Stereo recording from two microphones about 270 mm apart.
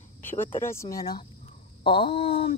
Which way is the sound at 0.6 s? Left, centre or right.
Centre.